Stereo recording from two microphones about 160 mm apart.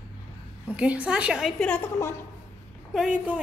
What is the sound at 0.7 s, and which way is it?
A woman's voice, 10° right (ahead or behind).